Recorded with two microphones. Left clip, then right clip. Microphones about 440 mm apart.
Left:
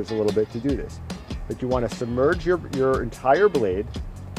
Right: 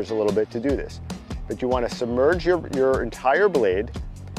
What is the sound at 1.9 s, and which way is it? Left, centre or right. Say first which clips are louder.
Speech: right 2 dB; left.